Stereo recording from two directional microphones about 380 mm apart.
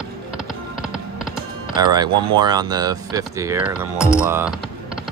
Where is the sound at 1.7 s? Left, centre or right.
Centre.